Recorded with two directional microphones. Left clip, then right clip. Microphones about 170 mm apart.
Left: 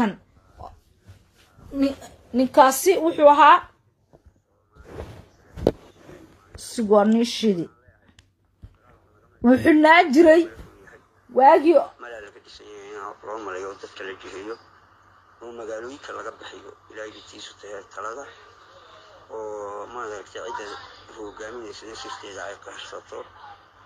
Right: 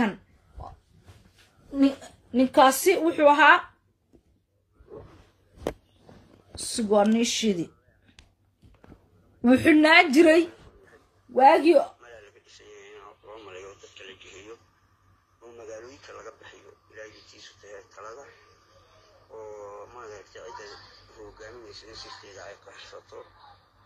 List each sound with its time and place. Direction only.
1.8 s a woman's voice: 40° left (ahead or behind)
2.4 s a woman's voice: 30° left (ahead or behind)
6.8 s speech: 30° left (ahead or behind)
7.1 s speech: centre (ahead or behind)
9.5 s speech: centre (ahead or behind)
10.9 s a sound: 25° left (ahead or behind)
15.4 s speech: 30° left (ahead or behind)